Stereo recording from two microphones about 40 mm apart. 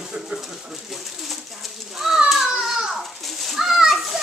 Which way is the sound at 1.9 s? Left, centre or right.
Centre.